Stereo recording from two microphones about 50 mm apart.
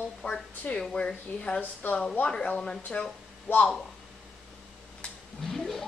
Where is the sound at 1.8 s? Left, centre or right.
Left.